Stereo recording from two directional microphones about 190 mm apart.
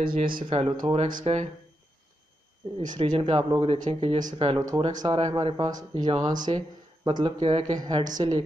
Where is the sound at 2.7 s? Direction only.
25° right (ahead or behind).